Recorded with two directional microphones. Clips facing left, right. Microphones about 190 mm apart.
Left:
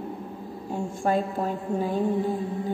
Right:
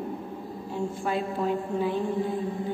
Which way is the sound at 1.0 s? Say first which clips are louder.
Left 4 dB; 45° left (ahead or behind).